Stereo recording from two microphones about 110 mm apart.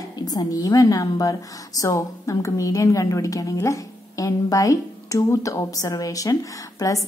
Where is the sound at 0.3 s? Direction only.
35° left (ahead or behind).